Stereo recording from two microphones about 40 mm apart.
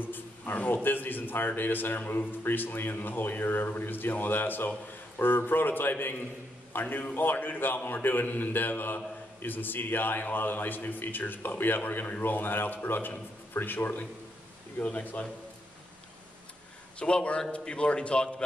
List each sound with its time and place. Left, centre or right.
0.0 s a man's voice: left
14.8 s a man's voice: left
17.0 s a man's voice: left